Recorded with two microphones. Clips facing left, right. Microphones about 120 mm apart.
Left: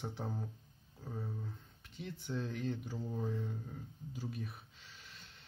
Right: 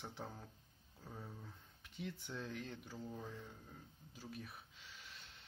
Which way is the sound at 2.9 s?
20° left (ahead or behind).